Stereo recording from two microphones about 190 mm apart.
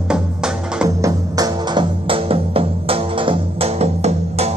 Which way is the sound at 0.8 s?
20° right (ahead or behind).